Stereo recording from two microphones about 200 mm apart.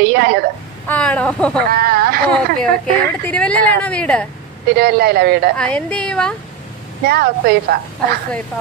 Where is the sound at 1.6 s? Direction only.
50° right (ahead or behind).